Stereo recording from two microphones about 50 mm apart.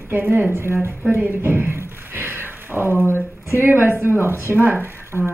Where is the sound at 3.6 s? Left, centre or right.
Right.